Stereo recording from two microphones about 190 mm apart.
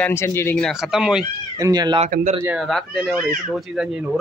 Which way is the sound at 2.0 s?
45° right (ahead or behind).